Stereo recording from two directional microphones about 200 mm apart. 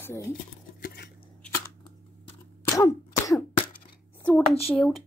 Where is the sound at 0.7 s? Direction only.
45° left (ahead or behind).